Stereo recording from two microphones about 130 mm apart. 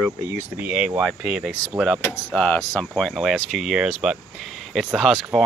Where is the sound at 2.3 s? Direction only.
5° left (ahead or behind).